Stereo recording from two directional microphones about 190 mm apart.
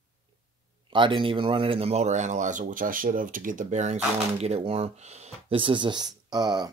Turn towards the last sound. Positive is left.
turn(degrees=-20)  # may be behind; listen again after turning